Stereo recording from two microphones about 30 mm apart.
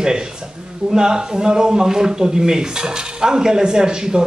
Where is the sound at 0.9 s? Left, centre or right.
Right.